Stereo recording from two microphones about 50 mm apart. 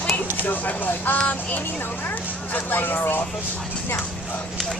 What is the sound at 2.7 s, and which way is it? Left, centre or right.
Speech, left.